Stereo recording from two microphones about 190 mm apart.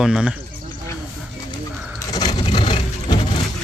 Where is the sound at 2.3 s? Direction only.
25° left (ahead or behind).